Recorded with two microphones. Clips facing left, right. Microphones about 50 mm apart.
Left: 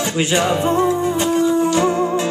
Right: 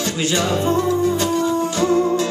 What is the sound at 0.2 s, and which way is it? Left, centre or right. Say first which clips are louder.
Music: left 3 dB; left.